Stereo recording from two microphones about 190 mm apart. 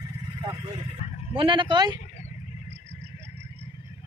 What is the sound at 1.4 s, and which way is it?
Speech, 25° right (ahead or behind).